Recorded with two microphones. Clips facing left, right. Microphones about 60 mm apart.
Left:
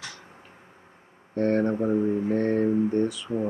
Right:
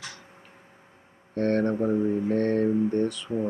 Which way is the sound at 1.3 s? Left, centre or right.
Centre.